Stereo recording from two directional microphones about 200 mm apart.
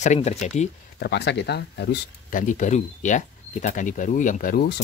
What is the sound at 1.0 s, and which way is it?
Speech, 55° left (ahead or behind).